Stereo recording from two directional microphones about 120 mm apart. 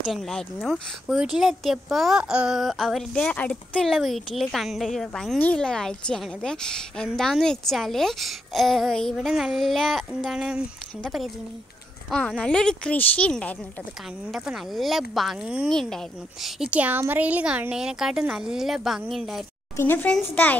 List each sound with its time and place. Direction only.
0.1 s speech: 5° left (ahead or behind)
14.3 s speech: centre (ahead or behind)
15.7 s speech: 5° left (ahead or behind)
19.8 s speech: 20° left (ahead or behind)